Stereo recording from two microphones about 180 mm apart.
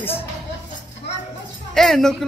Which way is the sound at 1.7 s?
Centre (ahead or behind).